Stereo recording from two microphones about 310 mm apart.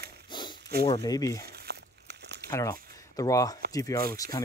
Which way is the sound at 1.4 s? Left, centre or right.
Right.